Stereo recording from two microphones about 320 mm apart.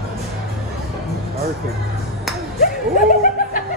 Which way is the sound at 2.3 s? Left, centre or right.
Centre.